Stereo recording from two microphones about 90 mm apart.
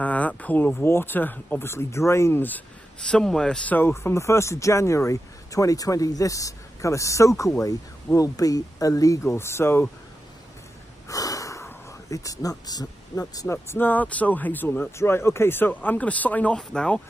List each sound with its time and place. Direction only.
0.0 s a sound: 15° left (ahead or behind)
0.8 s speech: 25° left (ahead or behind)
3.1 s a man's voice: 5° left (ahead or behind)
3.7 s speech: 30° left (ahead or behind)
9.4 s speech: 30° left (ahead or behind)
11.1 s snort: 40° left (ahead or behind)
13.2 s speech: 40° left (ahead or behind)
13.5 s speech: 25° left (ahead or behind)